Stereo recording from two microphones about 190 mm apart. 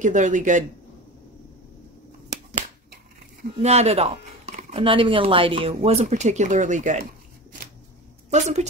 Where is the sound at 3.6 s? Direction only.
35° right (ahead or behind).